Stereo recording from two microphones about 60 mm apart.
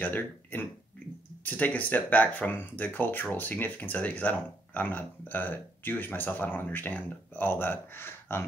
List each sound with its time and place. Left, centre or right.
0.0 s speech: left